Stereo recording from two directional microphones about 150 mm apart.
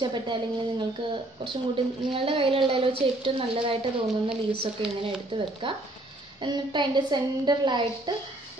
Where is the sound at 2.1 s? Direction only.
35° right (ahead or behind).